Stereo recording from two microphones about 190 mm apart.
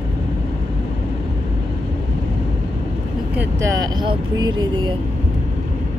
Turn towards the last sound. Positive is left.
turn(degrees=-25)  # may be behind; listen again after turning